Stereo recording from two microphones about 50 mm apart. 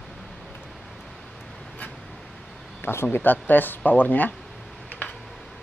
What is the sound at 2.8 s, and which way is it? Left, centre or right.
Speech, left.